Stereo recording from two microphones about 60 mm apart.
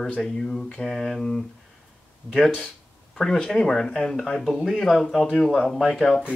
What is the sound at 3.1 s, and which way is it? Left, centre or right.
Speech, centre.